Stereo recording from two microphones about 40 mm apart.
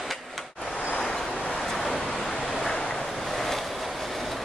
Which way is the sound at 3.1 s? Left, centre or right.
Centre.